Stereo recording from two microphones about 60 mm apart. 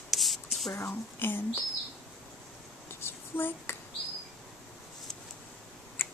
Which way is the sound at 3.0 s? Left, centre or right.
Left.